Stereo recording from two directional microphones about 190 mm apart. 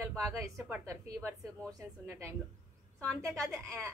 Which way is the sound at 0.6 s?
15° right (ahead or behind).